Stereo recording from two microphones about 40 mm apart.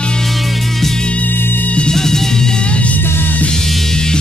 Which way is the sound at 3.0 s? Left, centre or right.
Left.